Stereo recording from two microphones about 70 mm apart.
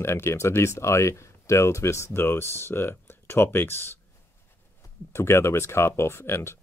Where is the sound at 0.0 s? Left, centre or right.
Left.